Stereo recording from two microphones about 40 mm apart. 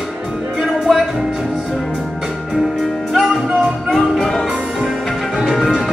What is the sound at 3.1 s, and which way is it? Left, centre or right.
Music, centre.